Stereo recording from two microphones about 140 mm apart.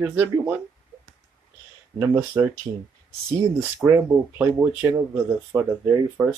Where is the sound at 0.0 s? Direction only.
15° right (ahead or behind).